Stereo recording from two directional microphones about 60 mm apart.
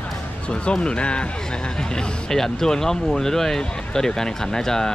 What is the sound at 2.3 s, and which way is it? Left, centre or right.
Speech, centre.